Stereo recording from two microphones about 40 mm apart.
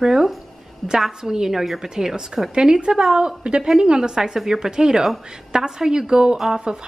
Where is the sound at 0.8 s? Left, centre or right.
Centre.